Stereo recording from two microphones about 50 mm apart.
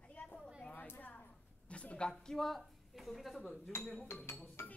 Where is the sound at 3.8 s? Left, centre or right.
Left.